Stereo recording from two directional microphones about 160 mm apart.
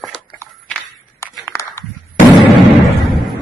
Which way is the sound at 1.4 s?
15° left (ahead or behind).